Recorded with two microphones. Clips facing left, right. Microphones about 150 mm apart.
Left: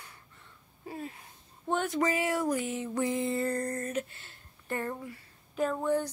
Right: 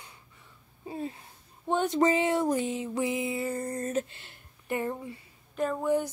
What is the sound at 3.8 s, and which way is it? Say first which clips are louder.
Speech: right 3 dB; 25° right (ahead or behind).